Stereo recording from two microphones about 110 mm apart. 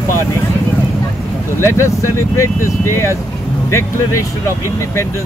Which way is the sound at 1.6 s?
25° left (ahead or behind).